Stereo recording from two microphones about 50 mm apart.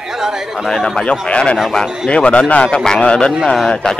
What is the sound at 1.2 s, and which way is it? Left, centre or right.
Speech, left.